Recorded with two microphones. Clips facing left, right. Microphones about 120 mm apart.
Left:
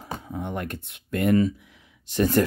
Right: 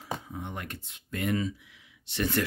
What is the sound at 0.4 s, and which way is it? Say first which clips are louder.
Speech: left 8 dB; 50° left (ahead or behind).